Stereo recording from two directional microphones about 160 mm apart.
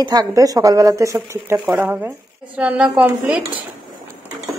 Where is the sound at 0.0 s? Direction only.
25° right (ahead or behind); by 3.4 s 10° right (ahead or behind).